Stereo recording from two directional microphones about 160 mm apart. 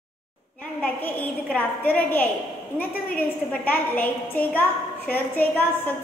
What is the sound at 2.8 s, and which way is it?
A woman's voice, 10° left (ahead or behind).